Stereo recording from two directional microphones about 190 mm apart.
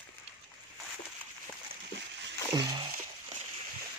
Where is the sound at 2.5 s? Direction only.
25° right (ahead or behind).